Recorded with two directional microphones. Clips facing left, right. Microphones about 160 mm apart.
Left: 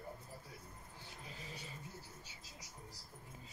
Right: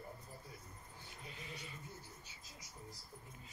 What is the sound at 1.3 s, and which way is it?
Speech, 35° left (ahead or behind).